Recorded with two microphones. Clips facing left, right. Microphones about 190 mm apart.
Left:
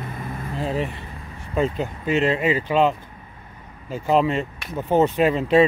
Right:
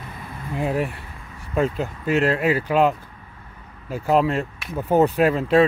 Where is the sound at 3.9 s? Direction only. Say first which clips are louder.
Even; 5° right (ahead or behind).